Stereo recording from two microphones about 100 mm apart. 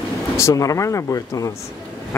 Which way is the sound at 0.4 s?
30° left (ahead or behind).